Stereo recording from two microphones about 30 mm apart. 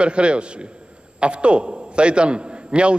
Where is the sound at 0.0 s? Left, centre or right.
Right.